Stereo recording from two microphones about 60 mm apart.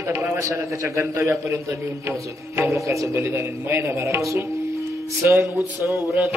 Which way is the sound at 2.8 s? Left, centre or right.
Right.